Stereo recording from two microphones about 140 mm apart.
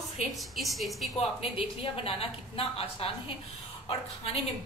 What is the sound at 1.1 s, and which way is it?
A woman's voice, 45° left (ahead or behind).